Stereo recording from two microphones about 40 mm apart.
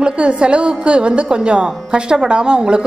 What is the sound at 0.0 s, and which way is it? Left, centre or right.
A woman's voice, right.